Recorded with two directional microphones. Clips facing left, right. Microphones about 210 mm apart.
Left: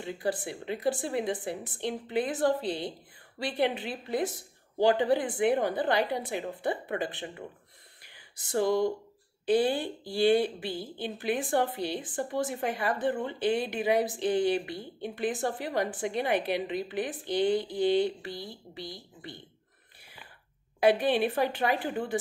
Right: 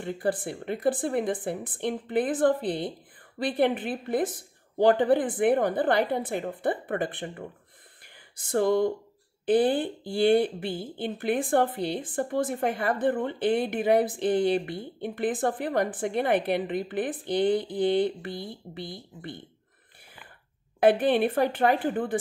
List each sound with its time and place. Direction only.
0.0 s speech: 55° right (ahead or behind)
8.0 s a sound: 50° right (ahead or behind)
9.5 s a woman's voice: 50° right (ahead or behind)
20.8 s speech: 50° right (ahead or behind)